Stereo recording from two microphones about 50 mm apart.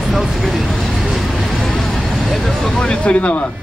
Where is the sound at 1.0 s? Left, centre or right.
Centre.